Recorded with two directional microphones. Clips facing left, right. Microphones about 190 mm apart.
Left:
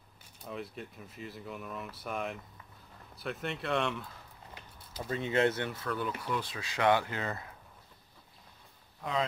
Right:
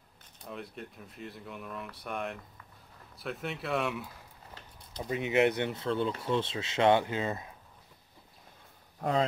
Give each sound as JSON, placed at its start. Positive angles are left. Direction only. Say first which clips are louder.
{"t": 0.4, "sound": "speech", "louder": "left 1 dB", "side_deg": 0}